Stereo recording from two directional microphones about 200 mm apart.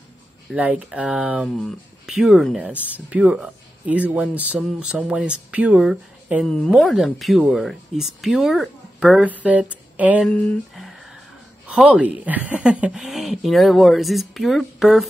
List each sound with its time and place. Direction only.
0.5 s speech: 5° right (ahead or behind)
10.2 s speech: 5° left (ahead or behind)